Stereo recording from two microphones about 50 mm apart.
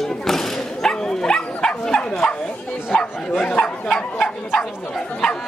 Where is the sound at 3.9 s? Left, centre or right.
Centre.